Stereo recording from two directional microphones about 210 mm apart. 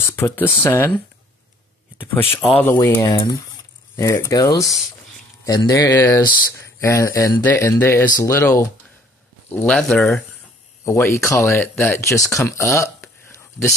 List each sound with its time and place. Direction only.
0.1 s speech: 10° left (ahead or behind)
2.1 s speech: 5° left (ahead or behind)